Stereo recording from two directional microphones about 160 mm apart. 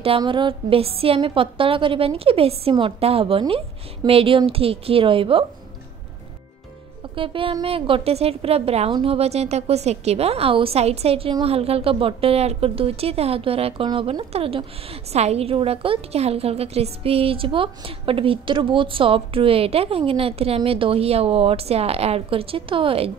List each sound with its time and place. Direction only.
0.0 s a woman's voice: 35° right (ahead or behind)
7.2 s a woman's voice: 35° right (ahead or behind)